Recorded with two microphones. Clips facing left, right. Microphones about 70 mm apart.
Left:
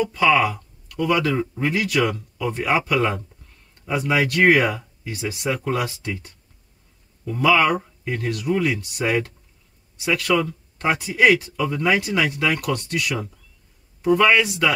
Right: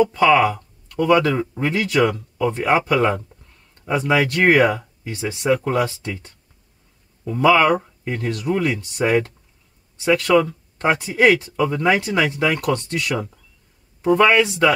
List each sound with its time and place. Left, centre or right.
0.0 s speech: right